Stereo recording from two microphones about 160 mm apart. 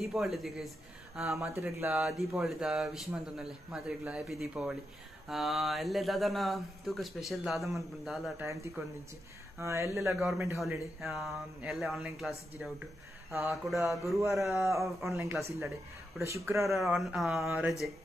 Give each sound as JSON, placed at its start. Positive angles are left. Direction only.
{"t": 0.0, "sound": "speech", "side_deg": 0}
{"t": 1.4, "sound": "speech", "side_deg": -15}
{"t": 2.0, "sound": "speech", "side_deg": 0}
{"t": 8.4, "sound": "speech", "side_deg": -10}
{"t": 10.6, "sound": "speech", "side_deg": 0}
{"t": 14.5, "sound": "speech", "side_deg": -15}
{"t": 14.8, "sound": "speech", "side_deg": 0}
{"t": 16.2, "sound": "speech", "side_deg": -15}
{"t": 16.6, "sound": "speech", "side_deg": 0}